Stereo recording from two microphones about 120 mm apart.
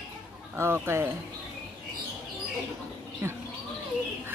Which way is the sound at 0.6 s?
20° right (ahead or behind).